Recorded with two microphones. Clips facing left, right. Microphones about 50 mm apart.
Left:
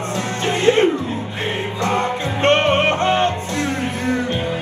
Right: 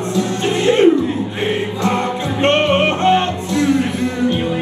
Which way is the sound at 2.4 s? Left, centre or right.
Right.